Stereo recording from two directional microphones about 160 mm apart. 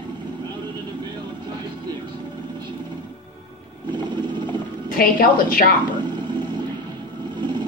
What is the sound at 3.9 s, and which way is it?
Vehicle, 30° right (ahead or behind).